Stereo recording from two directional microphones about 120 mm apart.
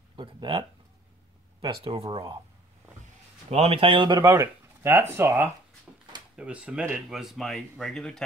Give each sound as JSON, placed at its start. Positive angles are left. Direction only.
{"t": 0.1, "sound": "speech", "side_deg": -40}
{"t": 3.4, "sound": "speech", "side_deg": -60}
{"t": 4.2, "sound": "speech", "side_deg": -20}
{"t": 6.3, "sound": "speech", "side_deg": -10}